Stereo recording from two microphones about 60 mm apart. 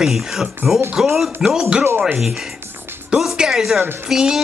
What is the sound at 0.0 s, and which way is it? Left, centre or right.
Speech, centre.